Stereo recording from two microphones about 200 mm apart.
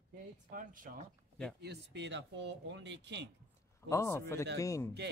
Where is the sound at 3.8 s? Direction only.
15° left (ahead or behind).